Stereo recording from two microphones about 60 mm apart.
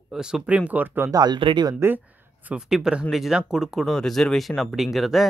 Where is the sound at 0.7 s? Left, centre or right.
Right.